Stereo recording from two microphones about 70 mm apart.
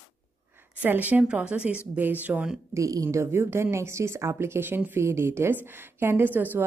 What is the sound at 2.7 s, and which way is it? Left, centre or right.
Speech, right.